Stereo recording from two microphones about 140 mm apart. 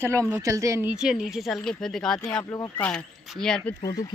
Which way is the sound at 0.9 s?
5° right (ahead or behind).